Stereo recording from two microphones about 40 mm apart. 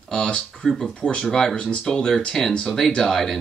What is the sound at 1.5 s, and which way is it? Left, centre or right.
Speech, left.